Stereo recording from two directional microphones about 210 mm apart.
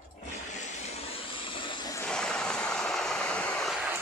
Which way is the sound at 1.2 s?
25° left (ahead or behind).